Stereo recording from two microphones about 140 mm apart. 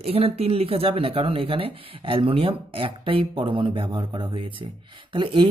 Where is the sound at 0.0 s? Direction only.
45° right (ahead or behind).